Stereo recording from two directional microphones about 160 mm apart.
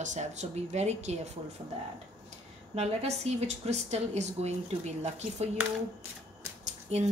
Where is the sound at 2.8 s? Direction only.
40° right (ahead or behind).